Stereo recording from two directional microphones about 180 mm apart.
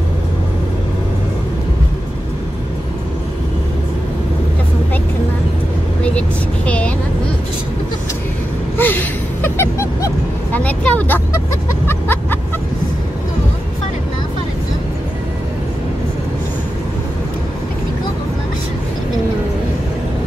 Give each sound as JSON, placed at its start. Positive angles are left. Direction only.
{"t": 6.0, "sound": "vehicle", "side_deg": 5}
{"t": 8.7, "sound": "gasp", "side_deg": 10}
{"t": 10.5, "sound": "vehicle", "side_deg": 5}
{"t": 11.9, "sound": "music", "side_deg": 10}